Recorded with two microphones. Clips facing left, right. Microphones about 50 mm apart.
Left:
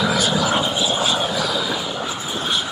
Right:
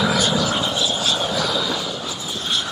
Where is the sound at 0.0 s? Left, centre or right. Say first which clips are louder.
Even; centre.